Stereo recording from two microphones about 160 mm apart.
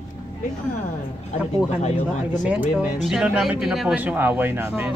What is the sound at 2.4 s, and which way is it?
Speech, 5° right (ahead or behind).